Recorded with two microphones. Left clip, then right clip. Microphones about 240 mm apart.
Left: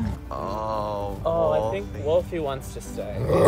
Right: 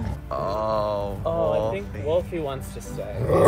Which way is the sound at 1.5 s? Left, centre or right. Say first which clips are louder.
Even; centre.